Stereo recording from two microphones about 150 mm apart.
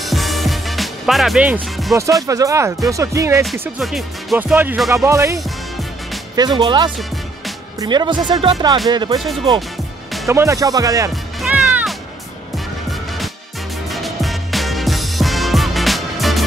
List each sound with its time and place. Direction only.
0.0 s music: centre (ahead or behind)
2.2 s speech: 20° right (ahead or behind)
3.8 s speech: centre (ahead or behind)
4.4 s music: 10° right (ahead or behind)
4.9 s speech: 20° right (ahead or behind)
6.3 s speech: 30° right (ahead or behind)
10.2 s speech: 20° right (ahead or behind)
11.4 s music: 5° right (ahead or behind)
13.9 s music: centre (ahead or behind)